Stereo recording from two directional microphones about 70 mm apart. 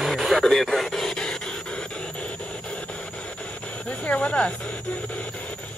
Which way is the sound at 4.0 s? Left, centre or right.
Centre.